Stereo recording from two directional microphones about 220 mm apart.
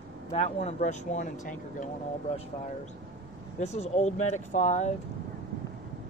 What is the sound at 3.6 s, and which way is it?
Speech, 30° left (ahead or behind).